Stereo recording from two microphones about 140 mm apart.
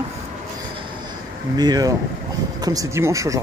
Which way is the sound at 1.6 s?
30° right (ahead or behind).